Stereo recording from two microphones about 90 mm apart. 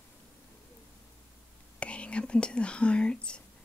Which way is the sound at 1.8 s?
15° left (ahead or behind).